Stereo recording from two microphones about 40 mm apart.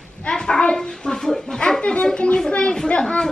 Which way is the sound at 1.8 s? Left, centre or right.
Left.